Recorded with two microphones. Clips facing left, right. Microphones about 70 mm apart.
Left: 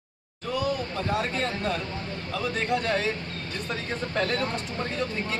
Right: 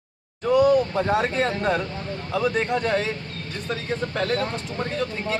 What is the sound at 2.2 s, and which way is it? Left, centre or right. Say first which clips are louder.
Speech: right 5 dB; centre.